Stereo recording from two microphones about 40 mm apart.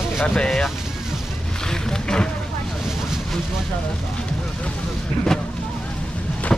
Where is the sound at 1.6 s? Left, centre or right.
Centre.